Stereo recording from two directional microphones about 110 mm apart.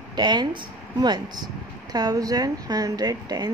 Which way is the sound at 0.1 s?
40° right (ahead or behind).